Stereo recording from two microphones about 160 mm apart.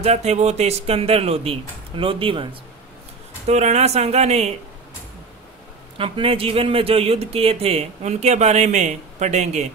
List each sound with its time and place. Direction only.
0.0 s speech: 45° right (ahead or behind)
3.4 s speech: 45° right (ahead or behind)
5.9 s speech: 35° right (ahead or behind)